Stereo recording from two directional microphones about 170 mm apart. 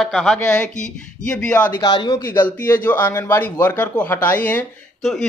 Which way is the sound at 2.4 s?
10° left (ahead or behind).